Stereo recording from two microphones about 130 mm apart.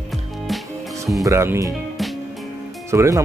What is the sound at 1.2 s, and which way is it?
Speech, 20° right (ahead or behind).